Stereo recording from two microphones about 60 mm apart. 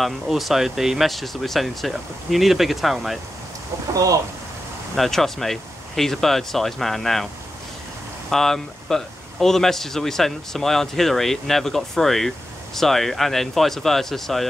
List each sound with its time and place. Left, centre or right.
0.0 s speech: centre
3.9 s speech: right
4.9 s speech: centre
8.3 s speech: centre